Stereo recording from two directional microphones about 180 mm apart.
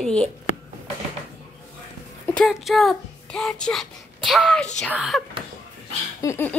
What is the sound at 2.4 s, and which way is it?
A child's voice, centre (ahead or behind).